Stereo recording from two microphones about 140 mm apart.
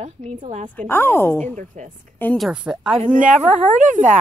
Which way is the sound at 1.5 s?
60° right (ahead or behind).